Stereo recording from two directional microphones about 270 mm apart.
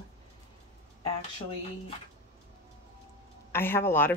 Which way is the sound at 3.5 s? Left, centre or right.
Centre.